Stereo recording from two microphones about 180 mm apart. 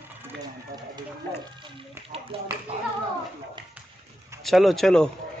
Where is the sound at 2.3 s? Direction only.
30° right (ahead or behind).